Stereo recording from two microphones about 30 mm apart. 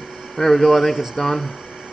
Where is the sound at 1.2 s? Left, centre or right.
Centre.